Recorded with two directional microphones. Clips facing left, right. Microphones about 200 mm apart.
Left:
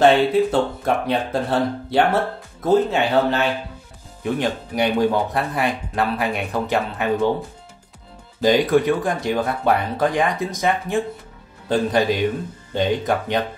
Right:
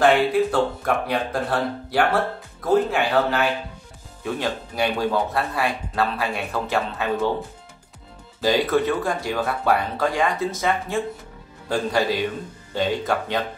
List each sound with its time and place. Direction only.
0.0 s speech: 25° left (ahead or behind)
8.4 s speech: 15° left (ahead or behind)